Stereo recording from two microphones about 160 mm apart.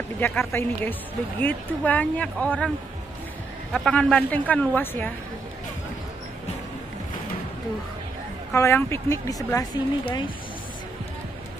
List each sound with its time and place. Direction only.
0.2 s speech: 5° left (ahead or behind)
3.7 s speech: centre (ahead or behind)
8.5 s speech: 15° left (ahead or behind)